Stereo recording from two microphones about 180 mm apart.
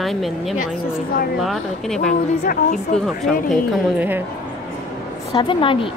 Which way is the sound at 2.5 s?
45° left (ahead or behind).